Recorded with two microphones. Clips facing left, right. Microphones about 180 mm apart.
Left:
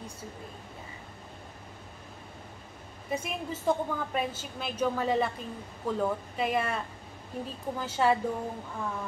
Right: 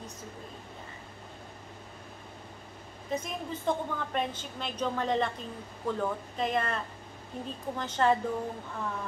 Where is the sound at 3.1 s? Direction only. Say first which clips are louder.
Left 1 dB; 5° left (ahead or behind).